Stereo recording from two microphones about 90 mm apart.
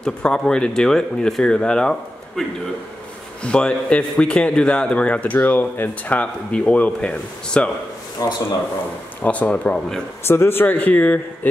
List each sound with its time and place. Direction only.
0.0 s a man's voice: 10° left (ahead or behind)
3.4 s a man's voice: 10° left (ahead or behind)
8.2 s speech: 40° left (ahead or behind)
9.2 s a man's voice: 15° left (ahead or behind)
10.2 s speech: 25° left (ahead or behind)